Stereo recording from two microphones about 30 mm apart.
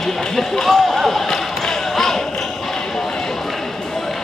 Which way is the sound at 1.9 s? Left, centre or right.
Centre.